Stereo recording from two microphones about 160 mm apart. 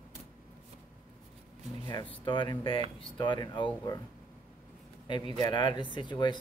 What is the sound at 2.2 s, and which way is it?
Speech, 30° left (ahead or behind).